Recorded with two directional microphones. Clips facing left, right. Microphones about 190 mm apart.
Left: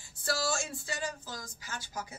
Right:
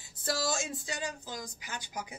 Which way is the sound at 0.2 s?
20° right (ahead or behind).